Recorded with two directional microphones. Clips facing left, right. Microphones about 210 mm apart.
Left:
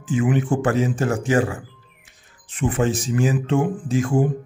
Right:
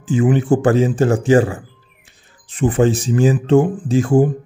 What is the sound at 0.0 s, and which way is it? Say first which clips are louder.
A man's voice: right 4 dB; 30° right (ahead or behind).